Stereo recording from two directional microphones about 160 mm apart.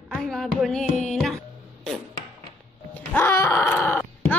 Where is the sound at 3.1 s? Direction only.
15° left (ahead or behind).